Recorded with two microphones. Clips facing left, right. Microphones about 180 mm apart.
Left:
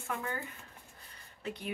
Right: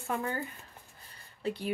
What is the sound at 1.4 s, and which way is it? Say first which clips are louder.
Speech: right 6 dB; 30° right (ahead or behind).